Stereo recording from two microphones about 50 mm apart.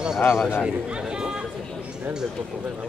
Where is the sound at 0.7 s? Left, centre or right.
Centre.